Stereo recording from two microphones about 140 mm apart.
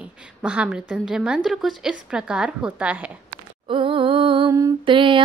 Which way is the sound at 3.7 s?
40° right (ahead or behind).